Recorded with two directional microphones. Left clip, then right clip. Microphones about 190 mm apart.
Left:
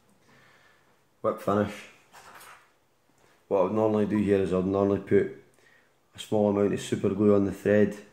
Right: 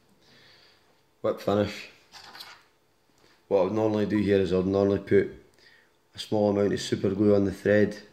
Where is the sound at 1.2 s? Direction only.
20° right (ahead or behind).